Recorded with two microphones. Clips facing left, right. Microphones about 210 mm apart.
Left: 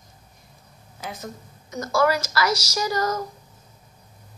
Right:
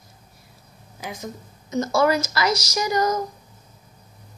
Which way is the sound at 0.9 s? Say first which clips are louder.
Right 2 dB; 15° right (ahead or behind).